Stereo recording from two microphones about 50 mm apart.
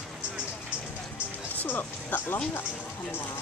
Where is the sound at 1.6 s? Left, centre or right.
Left.